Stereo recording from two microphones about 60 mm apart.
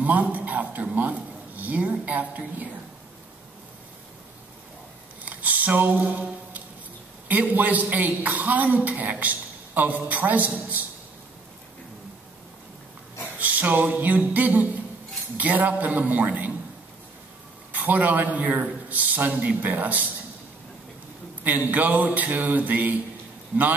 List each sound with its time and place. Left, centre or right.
0.0 s a woman's voice: right
5.2 s a sound: right
7.2 s a woman's voice: right
13.4 s a woman's voice: right
17.7 s a woman's voice: right
21.5 s a woman's voice: right